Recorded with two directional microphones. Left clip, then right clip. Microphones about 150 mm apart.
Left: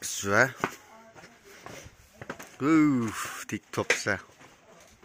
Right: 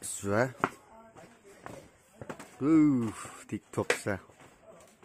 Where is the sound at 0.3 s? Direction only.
10° right (ahead or behind).